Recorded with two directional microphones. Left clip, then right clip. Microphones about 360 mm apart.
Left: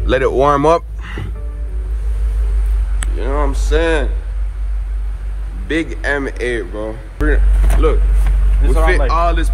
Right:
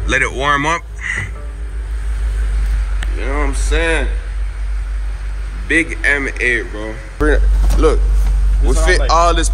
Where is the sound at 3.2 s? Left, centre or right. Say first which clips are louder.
Left 1 dB; centre.